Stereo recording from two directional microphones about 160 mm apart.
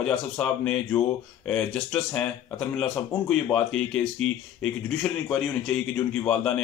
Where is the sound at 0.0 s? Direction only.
5° left (ahead or behind).